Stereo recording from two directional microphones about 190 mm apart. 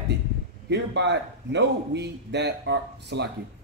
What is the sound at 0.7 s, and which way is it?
Speech, 65° right (ahead or behind).